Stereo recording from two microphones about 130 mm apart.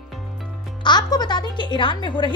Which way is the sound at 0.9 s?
30° left (ahead or behind).